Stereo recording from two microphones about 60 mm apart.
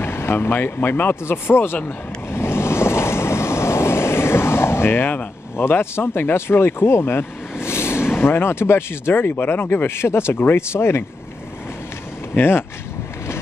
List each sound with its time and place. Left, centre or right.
0.0 s speech: left
2.3 s vehicle: left
8.2 s speech: left
12.4 s speech: left